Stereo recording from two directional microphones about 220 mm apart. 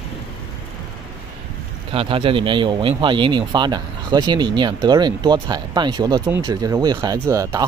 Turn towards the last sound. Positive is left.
turn(degrees=-15)  # may be behind; listen again after turning